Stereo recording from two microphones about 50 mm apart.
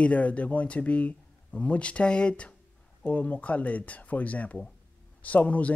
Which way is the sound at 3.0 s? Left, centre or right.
Left.